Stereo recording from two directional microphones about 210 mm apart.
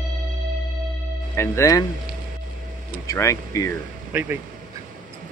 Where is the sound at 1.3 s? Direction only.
15° left (ahead or behind).